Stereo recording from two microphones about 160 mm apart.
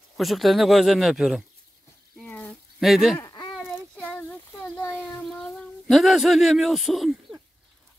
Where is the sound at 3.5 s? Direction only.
Centre (ahead or behind).